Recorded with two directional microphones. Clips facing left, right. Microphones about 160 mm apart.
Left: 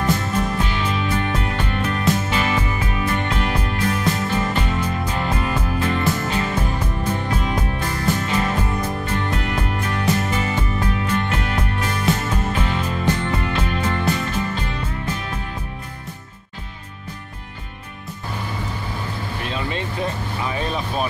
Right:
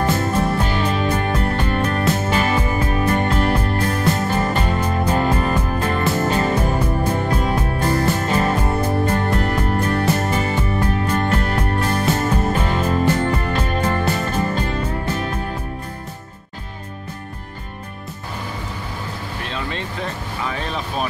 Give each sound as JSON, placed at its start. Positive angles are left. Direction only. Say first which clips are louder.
{"t": 0.7, "sound": "music", "louder": "right 3 dB", "side_deg": -45}
{"t": 20.4, "sound": "vehicle", "louder": "left 1 dB", "side_deg": 5}